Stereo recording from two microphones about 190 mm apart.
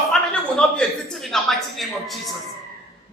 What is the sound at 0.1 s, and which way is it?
A woman's voice, 5° left (ahead or behind).